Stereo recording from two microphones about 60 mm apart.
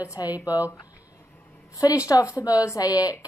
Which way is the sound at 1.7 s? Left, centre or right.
Left.